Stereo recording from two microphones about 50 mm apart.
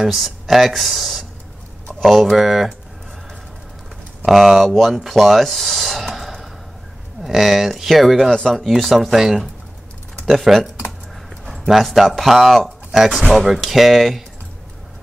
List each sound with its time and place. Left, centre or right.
0.0 s speech: centre
4.3 s speech: centre